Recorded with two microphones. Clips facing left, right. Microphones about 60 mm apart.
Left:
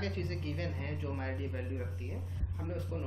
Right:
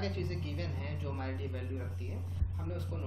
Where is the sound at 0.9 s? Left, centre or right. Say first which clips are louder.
Left 1 dB; left.